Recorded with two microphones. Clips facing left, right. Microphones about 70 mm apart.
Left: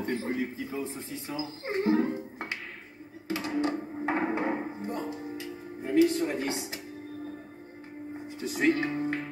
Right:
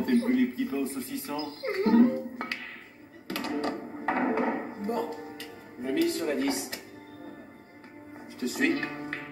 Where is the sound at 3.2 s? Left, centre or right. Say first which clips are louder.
Left 1 dB; centre.